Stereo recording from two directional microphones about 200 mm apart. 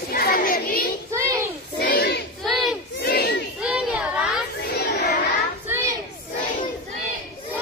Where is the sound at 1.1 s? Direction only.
15° right (ahead or behind).